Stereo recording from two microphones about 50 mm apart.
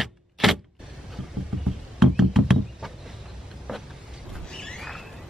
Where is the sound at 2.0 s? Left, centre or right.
Centre.